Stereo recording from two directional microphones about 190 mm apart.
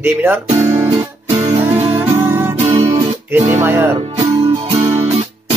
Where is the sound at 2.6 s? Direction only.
35° right (ahead or behind).